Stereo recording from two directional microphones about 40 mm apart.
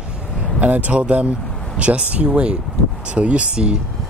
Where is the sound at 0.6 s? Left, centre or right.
Right.